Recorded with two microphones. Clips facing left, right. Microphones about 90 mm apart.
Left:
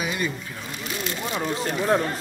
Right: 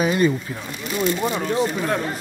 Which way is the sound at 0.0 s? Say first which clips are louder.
Right 9 dB; 40° right (ahead or behind).